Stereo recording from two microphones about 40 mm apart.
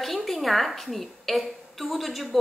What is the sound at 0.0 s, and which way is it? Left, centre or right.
Speech, centre.